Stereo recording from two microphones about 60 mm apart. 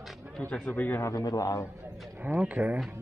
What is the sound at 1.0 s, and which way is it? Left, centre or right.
Speech, left.